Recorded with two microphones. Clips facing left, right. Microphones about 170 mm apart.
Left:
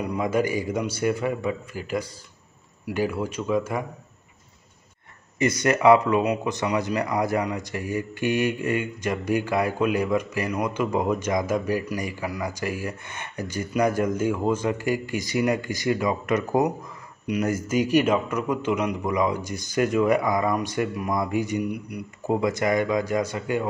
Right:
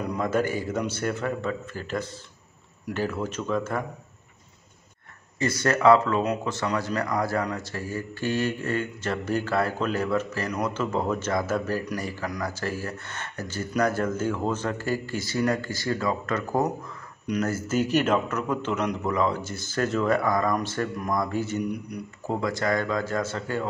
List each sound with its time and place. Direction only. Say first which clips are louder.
0.0 s speech: left 2 dB; 10° left (ahead or behind)
5.4 s speech: left 2 dB; 20° left (ahead or behind)